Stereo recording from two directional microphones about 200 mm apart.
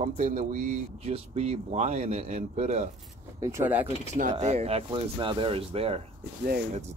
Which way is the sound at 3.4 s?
10° right (ahead or behind).